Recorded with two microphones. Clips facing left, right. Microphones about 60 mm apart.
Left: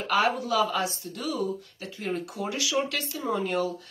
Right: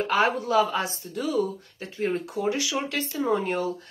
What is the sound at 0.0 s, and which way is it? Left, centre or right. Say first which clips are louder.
Speech: right 2 dB; right.